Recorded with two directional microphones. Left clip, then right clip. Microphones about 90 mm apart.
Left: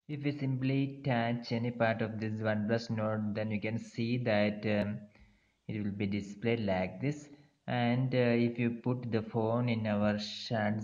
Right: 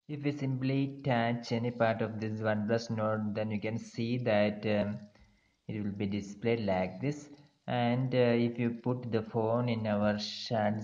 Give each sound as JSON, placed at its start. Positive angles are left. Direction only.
{"t": 0.1, "sound": "speech", "side_deg": -25}